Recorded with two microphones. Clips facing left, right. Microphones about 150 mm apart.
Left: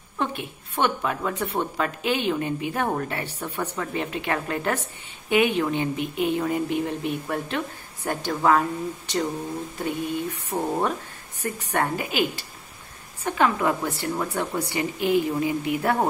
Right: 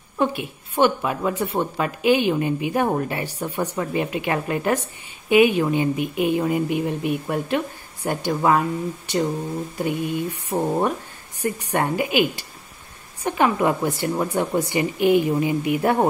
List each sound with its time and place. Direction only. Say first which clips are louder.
0.2 s speech: right 6 dB; 10° right (ahead or behind)